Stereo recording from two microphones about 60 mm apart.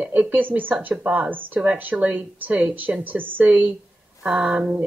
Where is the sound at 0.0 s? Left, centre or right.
Right.